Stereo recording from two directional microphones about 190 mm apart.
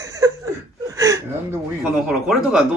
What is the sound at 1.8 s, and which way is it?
Speech, centre (ahead or behind).